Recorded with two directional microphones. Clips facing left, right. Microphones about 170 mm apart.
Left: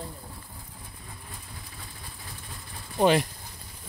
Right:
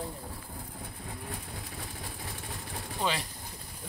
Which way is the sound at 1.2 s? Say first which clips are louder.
Right 5 dB; 75° right (ahead or behind).